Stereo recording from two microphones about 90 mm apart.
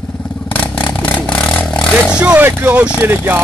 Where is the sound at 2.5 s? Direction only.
20° right (ahead or behind).